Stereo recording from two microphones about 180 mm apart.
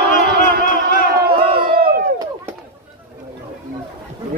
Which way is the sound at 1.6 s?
60° right (ahead or behind).